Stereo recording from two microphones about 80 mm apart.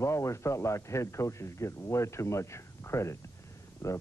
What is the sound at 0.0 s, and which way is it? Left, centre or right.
A man's voice, left.